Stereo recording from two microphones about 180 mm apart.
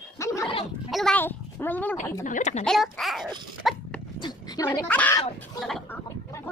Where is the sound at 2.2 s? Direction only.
45° left (ahead or behind).